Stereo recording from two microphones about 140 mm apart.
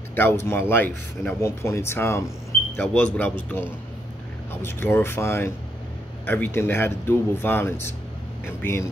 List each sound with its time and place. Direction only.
0.1 s speech: 15° left (ahead or behind)